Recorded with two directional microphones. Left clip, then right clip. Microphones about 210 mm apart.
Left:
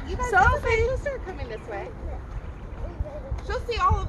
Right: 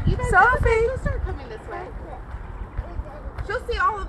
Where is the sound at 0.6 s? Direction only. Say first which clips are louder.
Right 3 dB; 50° right (ahead or behind).